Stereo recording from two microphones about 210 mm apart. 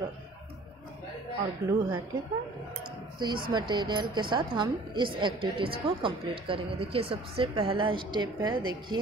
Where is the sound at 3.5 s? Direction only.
20° right (ahead or behind).